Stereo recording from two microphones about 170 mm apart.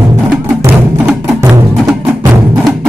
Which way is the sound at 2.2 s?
20° right (ahead or behind).